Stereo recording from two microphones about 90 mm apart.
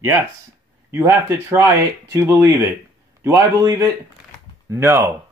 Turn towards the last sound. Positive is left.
turn(degrees=-30)  # may be behind; listen again after turning